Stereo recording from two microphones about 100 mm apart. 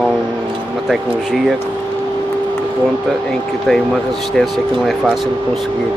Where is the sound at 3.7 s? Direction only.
Centre (ahead or behind).